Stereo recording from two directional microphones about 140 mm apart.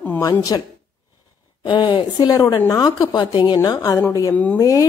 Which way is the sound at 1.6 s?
30° left (ahead or behind).